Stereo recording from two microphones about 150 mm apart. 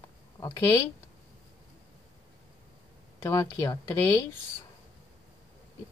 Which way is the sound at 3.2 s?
20° left (ahead or behind).